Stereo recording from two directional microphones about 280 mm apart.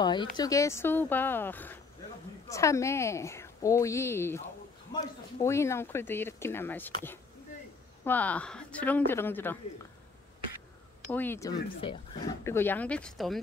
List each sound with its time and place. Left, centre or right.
0.0 s speech: centre
8.0 s speech: centre
11.1 s speech: centre